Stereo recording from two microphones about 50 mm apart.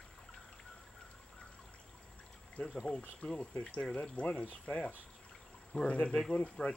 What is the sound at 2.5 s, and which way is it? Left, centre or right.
Speech, centre.